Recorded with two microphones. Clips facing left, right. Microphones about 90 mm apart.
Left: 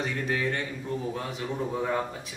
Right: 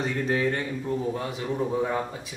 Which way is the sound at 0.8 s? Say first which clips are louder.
Right 5 dB; 5° right (ahead or behind).